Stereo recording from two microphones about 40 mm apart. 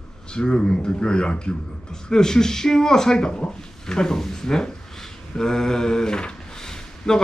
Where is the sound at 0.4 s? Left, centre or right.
Left.